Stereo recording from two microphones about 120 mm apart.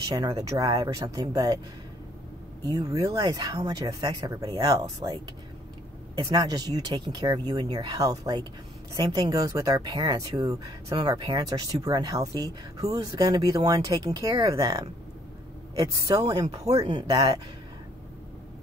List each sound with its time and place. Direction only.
0.1 s speech: 35° right (ahead or behind)
2.6 s speech: 30° right (ahead or behind)